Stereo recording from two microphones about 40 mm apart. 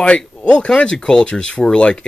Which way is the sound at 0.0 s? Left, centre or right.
Left.